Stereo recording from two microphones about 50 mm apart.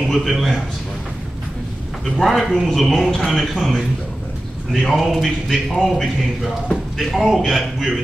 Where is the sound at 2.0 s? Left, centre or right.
Centre.